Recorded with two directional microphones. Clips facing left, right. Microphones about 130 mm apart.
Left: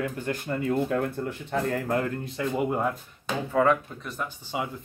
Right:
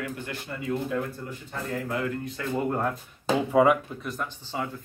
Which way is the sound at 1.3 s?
70° left (ahead or behind).